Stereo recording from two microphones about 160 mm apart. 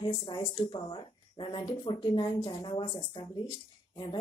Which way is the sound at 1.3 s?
30° left (ahead or behind).